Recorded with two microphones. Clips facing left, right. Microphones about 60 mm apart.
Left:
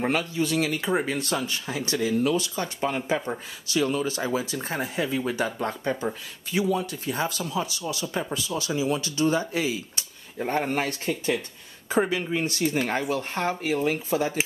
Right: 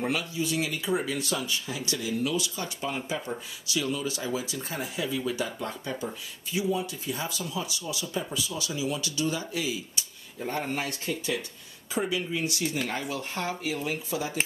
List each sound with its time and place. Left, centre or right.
0.0 s speech: left
6.5 s speech: left